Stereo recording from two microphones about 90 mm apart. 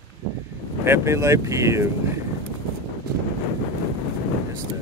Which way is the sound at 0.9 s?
30° right (ahead or behind).